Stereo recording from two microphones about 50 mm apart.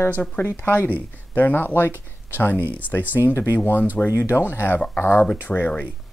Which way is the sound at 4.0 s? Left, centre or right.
Centre.